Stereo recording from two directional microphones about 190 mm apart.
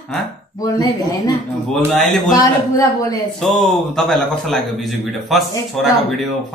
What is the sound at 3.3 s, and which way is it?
A man's voice, centre (ahead or behind).